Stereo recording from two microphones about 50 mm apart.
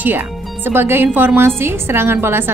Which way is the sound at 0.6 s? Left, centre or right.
Right.